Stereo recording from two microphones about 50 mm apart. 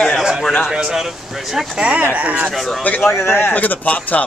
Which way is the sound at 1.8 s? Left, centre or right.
Right.